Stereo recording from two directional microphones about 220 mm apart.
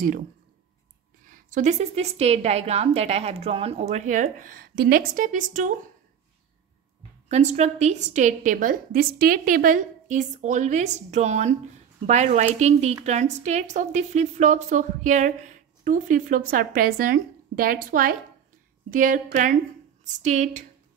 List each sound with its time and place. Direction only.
1.3 s a woman's voice: 35° right (ahead or behind)
7.2 s a woman's voice: 30° right (ahead or behind)